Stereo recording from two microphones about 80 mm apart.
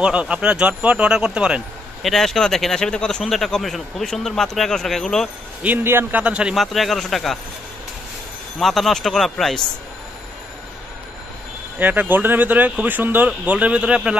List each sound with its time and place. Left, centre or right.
0.0 s speech: centre
2.0 s speech: centre
5.6 s speech: centre
6.5 s speech: centre
8.5 s speech: centre
11.8 s speech: right